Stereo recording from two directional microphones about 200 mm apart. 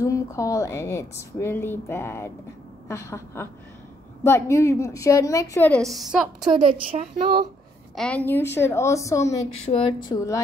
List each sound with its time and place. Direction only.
0.0 s a woman's voice: 15° left (ahead or behind); by 6.5 s centre (ahead or behind)
6.5 s speech: 25° right (ahead or behind)
7.9 s a woman's voice: centre (ahead or behind)
8.5 s a woman's voice: 15° left (ahead or behind)
9.6 s a woman's voice: 30° left (ahead or behind)